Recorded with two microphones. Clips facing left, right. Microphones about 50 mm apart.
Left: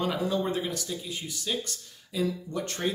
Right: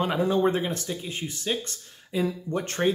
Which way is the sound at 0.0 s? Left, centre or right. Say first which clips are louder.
Right 5 dB; right.